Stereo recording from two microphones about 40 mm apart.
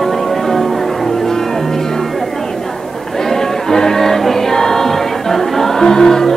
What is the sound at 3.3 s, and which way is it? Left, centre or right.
Music, centre.